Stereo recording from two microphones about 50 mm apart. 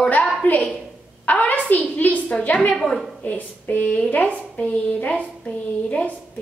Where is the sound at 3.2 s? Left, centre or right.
Left.